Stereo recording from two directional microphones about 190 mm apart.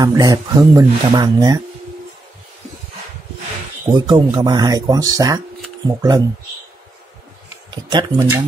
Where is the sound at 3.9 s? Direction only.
20° right (ahead or behind).